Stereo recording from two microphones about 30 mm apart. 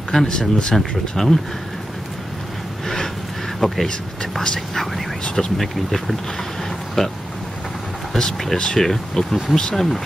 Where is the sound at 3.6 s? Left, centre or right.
Centre.